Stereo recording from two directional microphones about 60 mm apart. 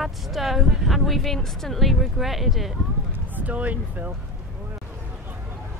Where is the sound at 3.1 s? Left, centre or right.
Right.